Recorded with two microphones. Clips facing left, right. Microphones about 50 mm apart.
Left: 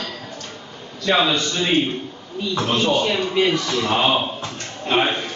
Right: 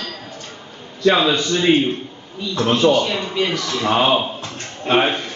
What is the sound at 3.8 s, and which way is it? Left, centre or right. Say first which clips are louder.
A man's voice: right 5 dB; centre.